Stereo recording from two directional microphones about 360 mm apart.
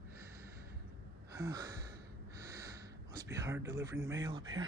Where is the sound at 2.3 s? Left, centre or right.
Centre.